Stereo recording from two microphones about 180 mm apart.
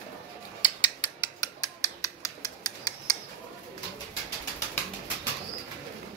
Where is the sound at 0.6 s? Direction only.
25° left (ahead or behind).